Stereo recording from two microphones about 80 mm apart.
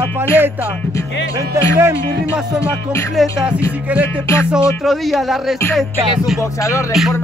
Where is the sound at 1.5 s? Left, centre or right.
Right.